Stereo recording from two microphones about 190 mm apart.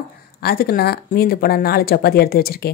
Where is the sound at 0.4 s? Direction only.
55° left (ahead or behind).